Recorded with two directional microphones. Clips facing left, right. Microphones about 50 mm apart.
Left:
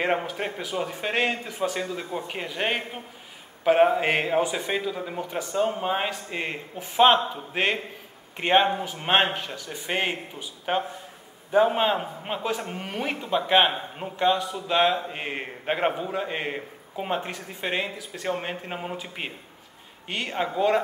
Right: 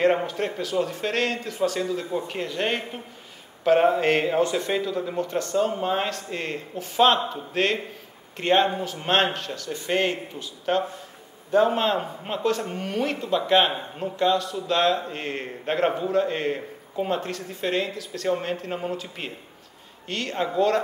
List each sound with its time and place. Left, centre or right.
0.2 s speech: centre